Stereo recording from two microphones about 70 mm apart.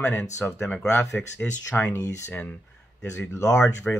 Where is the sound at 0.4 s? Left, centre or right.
Left.